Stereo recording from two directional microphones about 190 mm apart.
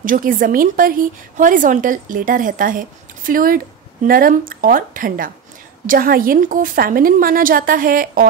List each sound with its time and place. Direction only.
0.0 s a woman's voice: 45° right (ahead or behind)